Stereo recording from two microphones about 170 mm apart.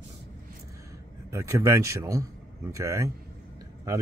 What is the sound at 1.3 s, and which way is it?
Speech, 15° right (ahead or behind).